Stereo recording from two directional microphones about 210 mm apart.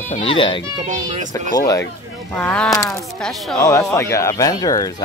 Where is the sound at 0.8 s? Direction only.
35° right (ahead or behind).